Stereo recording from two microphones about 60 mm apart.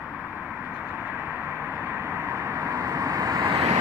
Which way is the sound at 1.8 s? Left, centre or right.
Right.